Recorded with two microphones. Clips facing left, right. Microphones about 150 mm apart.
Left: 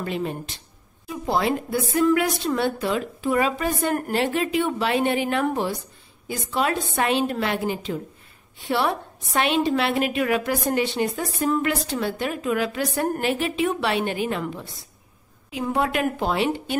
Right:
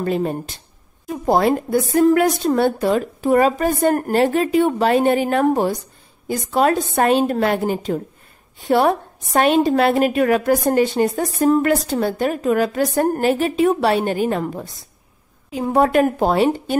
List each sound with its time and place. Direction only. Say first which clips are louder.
0.0 s a woman's voice: right 7 dB; 40° right (ahead or behind)